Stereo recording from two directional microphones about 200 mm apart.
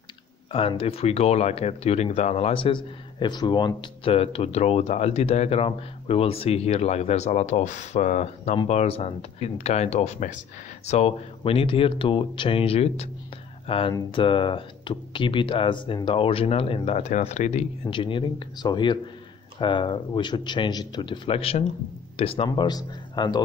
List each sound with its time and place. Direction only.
0.5 s speech: 30° left (ahead or behind)